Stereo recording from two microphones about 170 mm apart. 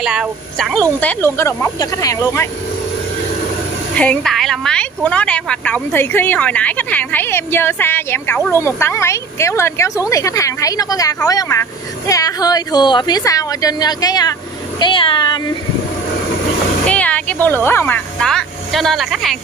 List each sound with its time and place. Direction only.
0.0 s a woman's voice: 5° right (ahead or behind); by 2.4 s 20° left (ahead or behind)
3.9 s a woman's voice: 5° left (ahead or behind); by 15.4 s 25° left (ahead or behind)
16.8 s speech: 10° left (ahead or behind)